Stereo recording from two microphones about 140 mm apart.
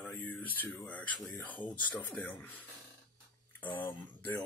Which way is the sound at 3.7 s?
15° left (ahead or behind).